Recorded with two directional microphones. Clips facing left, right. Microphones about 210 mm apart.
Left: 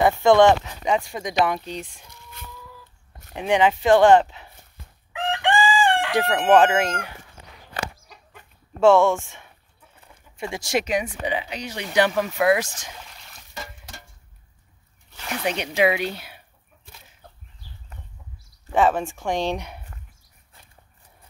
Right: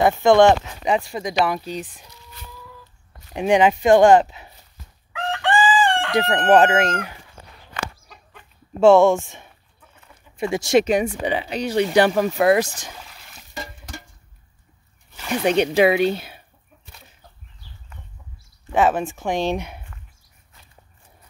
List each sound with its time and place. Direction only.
0.0 s speech: 15° right (ahead or behind)
0.8 s speech: centre (ahead or behind)
3.3 s speech: 15° right (ahead or behind)
5.1 s chicken: 15° left (ahead or behind)
6.3 s speech: 5° right (ahead or behind)
7.8 s chicken: 10° left (ahead or behind)
8.8 s speech: 15° right (ahead or behind); by 12.7 s 40° right (ahead or behind)
15.6 s speech: 35° right (ahead or behind)
18.7 s speech: 5° right (ahead or behind)